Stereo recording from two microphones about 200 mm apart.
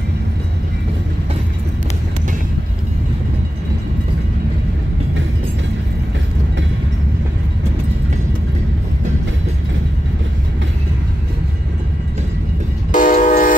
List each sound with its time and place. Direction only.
12.9 s train: 40° left (ahead or behind)